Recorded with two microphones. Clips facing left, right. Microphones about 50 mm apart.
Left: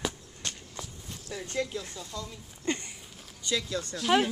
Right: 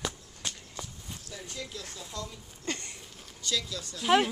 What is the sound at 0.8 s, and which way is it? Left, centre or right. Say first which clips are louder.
Walk: even; centre.